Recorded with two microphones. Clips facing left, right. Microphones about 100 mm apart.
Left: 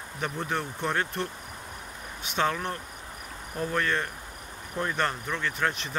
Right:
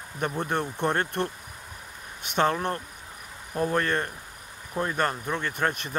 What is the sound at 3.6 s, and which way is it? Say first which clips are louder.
A man's voice: right 3 dB; 40° right (ahead or behind).